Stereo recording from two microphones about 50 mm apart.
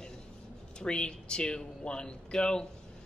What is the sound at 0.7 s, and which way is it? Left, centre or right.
A man's voice, centre.